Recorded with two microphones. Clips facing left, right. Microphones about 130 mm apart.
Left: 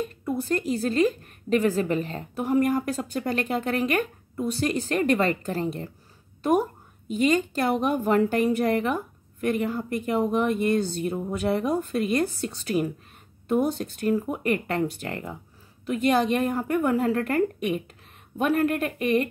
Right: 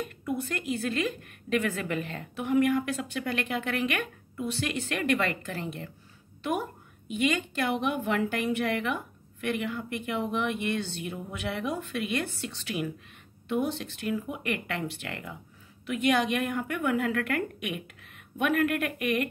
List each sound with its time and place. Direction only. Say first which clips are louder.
0.0 s a woman's voice: left 4 dB; 35° left (ahead or behind)